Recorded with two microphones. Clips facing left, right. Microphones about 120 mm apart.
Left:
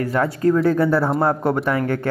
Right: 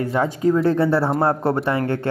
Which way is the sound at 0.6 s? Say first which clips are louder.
Even; 30° right (ahead or behind).